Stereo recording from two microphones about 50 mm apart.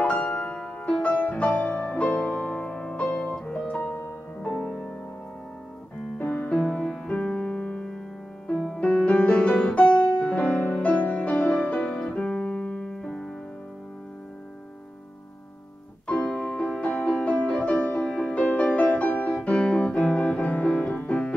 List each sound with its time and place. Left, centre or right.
0.0 s music: left
3.1 s music: centre
3.4 s piano: left
4.4 s music: left
6.1 s music: left; by 8.8 s centre
8.8 s piano: left
16.1 s music: centre